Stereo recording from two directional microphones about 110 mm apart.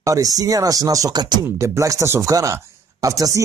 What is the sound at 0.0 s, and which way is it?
Speech, 30° right (ahead or behind).